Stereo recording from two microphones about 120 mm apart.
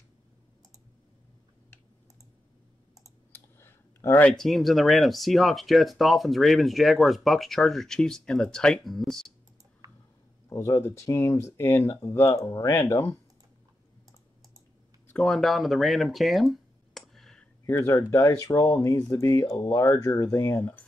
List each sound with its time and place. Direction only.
3.3 s clicking: 20° left (ahead or behind)
4.4 s speech: centre (ahead or behind)
9.8 s a sound: 30° right (ahead or behind)
10.5 s speech: 25° left (ahead or behind)
15.0 s a sound: 5° left (ahead or behind)
17.6 s speech: 25° left (ahead or behind)